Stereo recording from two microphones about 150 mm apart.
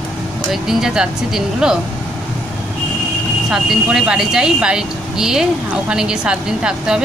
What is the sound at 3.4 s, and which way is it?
Speech, 5° right (ahead or behind).